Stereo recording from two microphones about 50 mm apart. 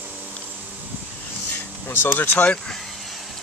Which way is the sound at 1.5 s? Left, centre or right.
Left.